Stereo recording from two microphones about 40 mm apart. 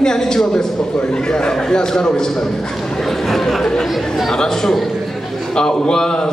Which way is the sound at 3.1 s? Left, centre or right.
Centre.